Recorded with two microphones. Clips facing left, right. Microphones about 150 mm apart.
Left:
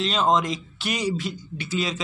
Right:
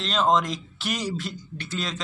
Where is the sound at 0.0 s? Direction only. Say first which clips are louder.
Left 1 dB; centre (ahead or behind).